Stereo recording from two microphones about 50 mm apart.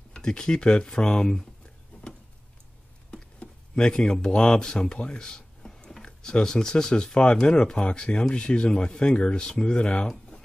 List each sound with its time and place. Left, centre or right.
0.1 s speech: centre
1.9 s a sound: left
3.1 s speech: centre
9.8 s speech: left